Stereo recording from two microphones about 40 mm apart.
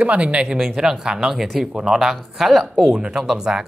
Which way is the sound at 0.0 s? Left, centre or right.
Right.